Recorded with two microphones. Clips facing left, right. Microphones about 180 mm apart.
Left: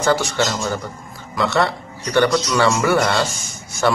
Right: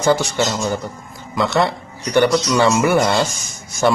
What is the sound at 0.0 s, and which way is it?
Speech, 20° right (ahead or behind).